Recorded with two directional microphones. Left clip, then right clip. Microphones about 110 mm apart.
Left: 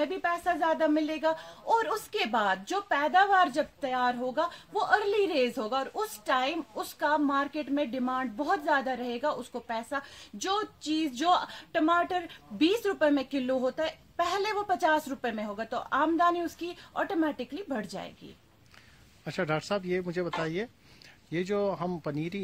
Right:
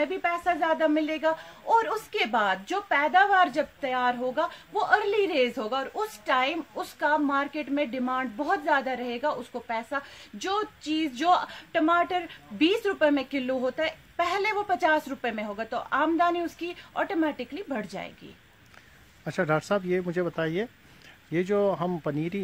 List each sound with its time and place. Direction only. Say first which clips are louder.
0.0 s a woman's voice: right 3 dB; centre (ahead or behind)
19.2 s speech: right 5 dB; 60° right (ahead or behind); by 22.4 s 45° right (ahead or behind)